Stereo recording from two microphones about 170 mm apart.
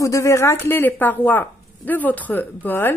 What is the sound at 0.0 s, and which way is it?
A woman's voice, 15° left (ahead or behind).